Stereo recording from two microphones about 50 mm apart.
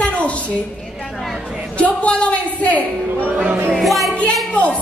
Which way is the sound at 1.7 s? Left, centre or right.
Left.